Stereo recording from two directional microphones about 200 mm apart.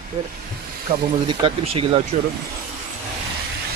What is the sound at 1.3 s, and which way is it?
Speech, 25° right (ahead or behind).